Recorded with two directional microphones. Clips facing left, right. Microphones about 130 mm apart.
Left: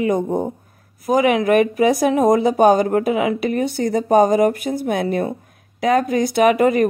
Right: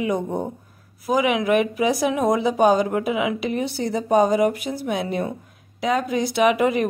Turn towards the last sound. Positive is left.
turn(degrees=50)  # may be behind; listen again after turning